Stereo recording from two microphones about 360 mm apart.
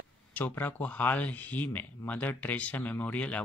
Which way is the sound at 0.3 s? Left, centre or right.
Centre.